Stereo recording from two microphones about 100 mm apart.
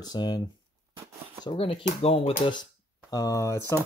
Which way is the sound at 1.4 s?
65° left (ahead or behind).